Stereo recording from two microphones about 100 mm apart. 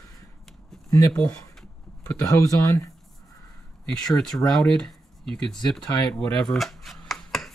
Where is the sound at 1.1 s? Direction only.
10° left (ahead or behind).